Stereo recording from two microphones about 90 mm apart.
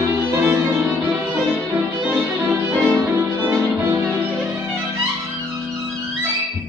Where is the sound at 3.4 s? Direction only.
30° right (ahead or behind).